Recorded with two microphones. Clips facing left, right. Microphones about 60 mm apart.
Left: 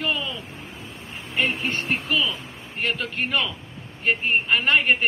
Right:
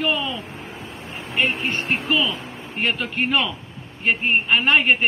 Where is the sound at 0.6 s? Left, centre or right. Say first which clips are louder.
Right 4 dB; centre.